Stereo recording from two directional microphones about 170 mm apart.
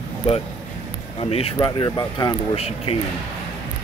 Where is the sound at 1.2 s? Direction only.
35° left (ahead or behind).